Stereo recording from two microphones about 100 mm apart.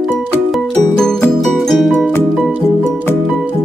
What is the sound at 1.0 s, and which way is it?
Music, 5° left (ahead or behind).